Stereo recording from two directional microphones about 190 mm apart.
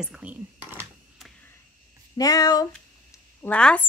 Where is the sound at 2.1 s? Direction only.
20° left (ahead or behind).